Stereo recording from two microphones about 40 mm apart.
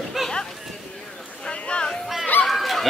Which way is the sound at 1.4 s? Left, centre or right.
Left.